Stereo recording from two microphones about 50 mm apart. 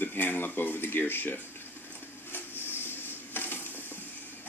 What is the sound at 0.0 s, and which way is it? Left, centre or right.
Speech, left.